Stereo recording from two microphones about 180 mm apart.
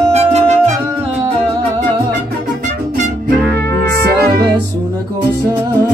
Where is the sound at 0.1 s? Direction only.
40° right (ahead or behind).